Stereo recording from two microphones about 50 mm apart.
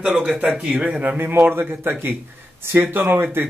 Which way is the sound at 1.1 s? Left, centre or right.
Right.